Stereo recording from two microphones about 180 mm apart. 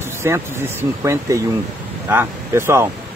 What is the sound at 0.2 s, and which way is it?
Speech, 15° right (ahead or behind).